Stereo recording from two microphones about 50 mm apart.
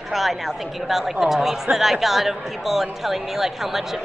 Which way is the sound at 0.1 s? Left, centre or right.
Centre.